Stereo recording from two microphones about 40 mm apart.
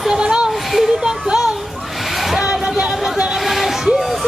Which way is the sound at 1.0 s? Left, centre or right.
Centre.